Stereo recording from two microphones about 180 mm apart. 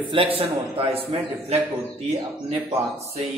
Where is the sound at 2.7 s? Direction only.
35° right (ahead or behind).